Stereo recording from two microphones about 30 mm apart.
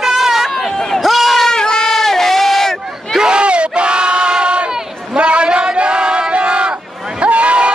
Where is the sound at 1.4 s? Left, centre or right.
Left.